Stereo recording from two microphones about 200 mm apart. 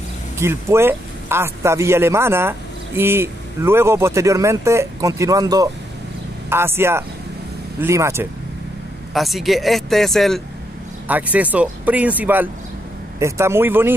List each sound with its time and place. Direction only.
0.4 s speech: 15° right (ahead or behind)
9.1 s speech: centre (ahead or behind)